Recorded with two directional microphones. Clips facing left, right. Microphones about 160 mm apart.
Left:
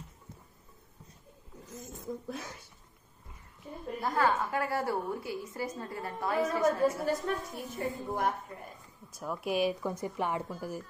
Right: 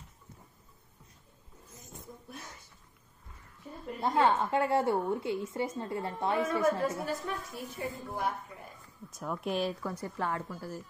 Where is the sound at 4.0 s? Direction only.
25° right (ahead or behind).